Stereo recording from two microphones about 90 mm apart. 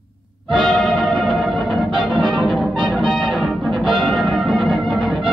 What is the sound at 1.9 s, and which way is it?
Music, 65° right (ahead or behind).